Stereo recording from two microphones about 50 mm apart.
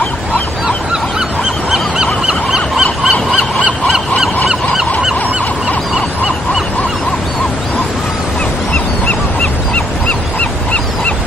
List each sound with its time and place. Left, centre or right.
1.7 s goose: centre
2.8 s honk: centre